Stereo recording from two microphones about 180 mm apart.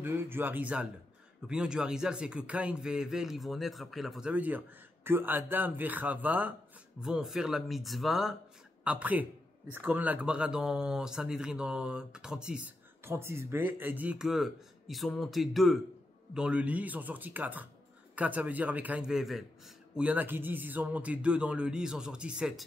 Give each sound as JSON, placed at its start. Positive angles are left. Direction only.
{"t": 0.0, "sound": "a man's voice", "side_deg": -10}